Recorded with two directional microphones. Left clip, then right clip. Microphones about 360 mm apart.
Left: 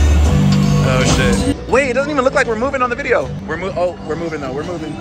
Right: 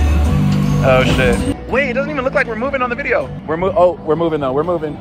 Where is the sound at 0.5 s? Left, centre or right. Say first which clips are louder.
Right 6 dB; centre.